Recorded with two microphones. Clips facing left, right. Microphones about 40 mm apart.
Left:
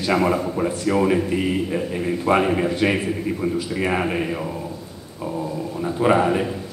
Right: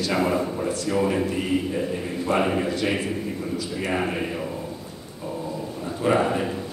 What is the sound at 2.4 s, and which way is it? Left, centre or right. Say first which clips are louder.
Speech: left 3 dB; centre.